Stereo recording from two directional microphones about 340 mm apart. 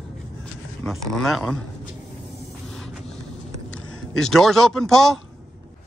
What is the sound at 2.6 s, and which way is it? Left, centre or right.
Vehicle, centre.